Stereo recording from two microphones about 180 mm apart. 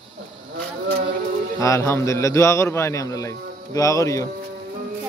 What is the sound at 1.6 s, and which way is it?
A man's voice, 15° left (ahead or behind).